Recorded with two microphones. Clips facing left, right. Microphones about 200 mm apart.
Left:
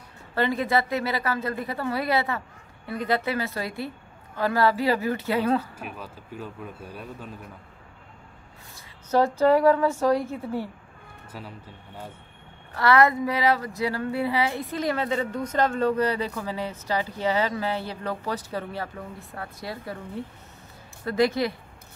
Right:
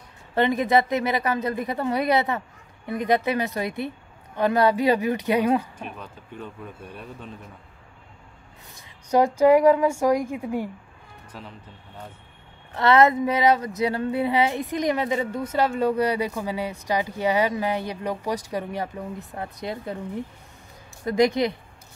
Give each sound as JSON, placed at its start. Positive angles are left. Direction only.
{"t": 0.3, "sound": "a woman's voice", "side_deg": -20}
{"t": 5.8, "sound": "speech", "side_deg": 5}
{"t": 9.1, "sound": "speech", "side_deg": -15}
{"t": 11.3, "sound": "speech", "side_deg": 5}
{"t": 12.7, "sound": "speech", "side_deg": -20}